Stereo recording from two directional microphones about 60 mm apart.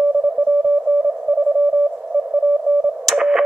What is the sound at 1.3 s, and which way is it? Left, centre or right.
Sidetone, centre.